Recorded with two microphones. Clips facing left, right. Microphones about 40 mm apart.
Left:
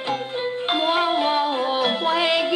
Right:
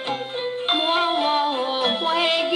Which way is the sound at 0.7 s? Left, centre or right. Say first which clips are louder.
Even; right.